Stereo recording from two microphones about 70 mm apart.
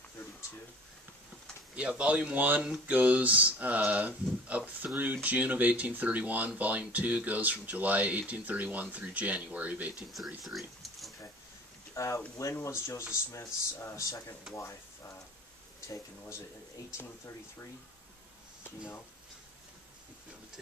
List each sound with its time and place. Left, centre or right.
1.8 s speech: centre
10.1 s speech: centre
11.9 s speech: left